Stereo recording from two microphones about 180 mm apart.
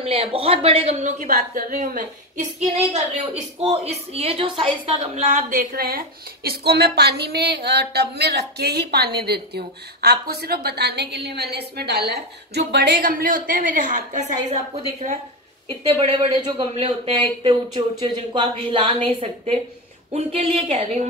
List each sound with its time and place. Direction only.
0.0 s a woman's voice: 30° right (ahead or behind)
15.8 s a woman's voice: 35° right (ahead or behind)